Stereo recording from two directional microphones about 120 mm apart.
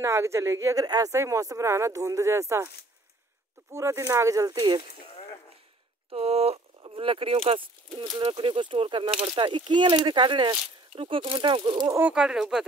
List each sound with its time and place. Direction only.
0.0 s speech: 25° right (ahead or behind)
3.7 s speech: 25° right (ahead or behind)
6.0 s speech: 60° right (ahead or behind)
6.8 s speech: 45° right (ahead or behind)
12.1 s speech: 5° right (ahead or behind)